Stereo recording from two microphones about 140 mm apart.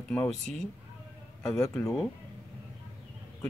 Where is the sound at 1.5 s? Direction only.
20° left (ahead or behind).